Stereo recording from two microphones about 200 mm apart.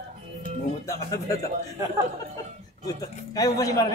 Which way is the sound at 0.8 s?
15° left (ahead or behind).